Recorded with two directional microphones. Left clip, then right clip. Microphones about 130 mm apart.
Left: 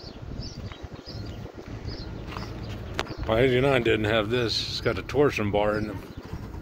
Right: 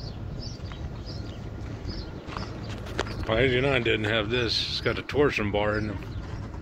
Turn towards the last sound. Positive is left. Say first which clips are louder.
# left 2 dB
turn(degrees=20)  # may be behind; listen again after turning